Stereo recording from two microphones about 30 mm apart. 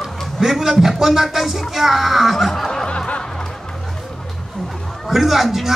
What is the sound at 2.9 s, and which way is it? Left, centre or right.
Snicker, left.